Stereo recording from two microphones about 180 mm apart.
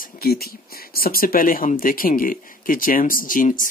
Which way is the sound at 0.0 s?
60° left (ahead or behind).